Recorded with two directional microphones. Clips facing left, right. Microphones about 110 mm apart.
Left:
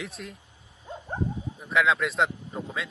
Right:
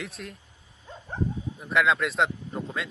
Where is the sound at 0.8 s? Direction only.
15° left (ahead or behind).